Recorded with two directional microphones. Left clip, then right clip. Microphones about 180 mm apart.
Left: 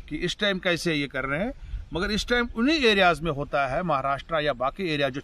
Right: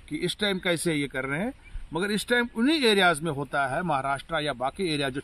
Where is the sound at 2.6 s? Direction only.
35° left (ahead or behind).